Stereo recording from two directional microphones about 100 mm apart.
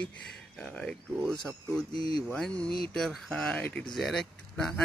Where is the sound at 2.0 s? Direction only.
70° right (ahead or behind).